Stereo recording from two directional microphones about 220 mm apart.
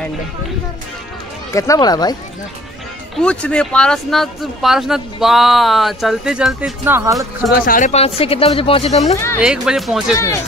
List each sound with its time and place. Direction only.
1.5 s speech: 15° left (ahead or behind)
3.2 s speech: 5° left (ahead or behind); by 7.2 s 10° right (ahead or behind)
7.6 s speech: 35° left (ahead or behind)
9.1 s speech: 10° left (ahead or behind)
9.4 s speech: 5° right (ahead or behind)
10.1 s speech: 15° left (ahead or behind)